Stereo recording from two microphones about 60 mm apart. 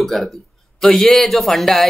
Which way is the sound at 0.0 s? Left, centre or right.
Centre.